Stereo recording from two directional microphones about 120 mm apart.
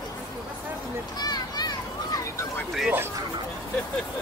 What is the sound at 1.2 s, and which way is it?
Children playing, 35° left (ahead or behind).